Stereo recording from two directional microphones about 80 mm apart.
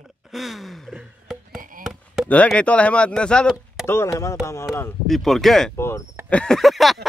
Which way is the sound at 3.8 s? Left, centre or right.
Left.